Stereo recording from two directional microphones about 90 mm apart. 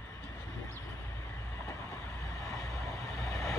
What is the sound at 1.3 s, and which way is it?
Train, 35° left (ahead or behind).